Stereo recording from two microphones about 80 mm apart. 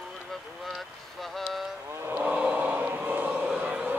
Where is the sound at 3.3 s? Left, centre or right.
Centre.